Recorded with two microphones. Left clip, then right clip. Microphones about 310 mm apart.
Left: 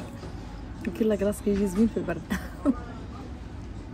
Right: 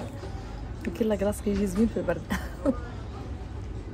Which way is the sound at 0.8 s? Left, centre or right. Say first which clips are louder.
Left 1 dB; centre.